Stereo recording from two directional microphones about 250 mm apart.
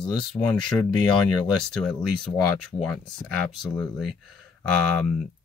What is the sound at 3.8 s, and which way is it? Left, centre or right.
Speech, centre.